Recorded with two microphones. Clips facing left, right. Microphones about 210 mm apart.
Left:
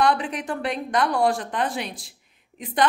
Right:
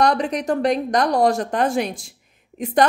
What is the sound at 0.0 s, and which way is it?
A woman's voice, 40° right (ahead or behind).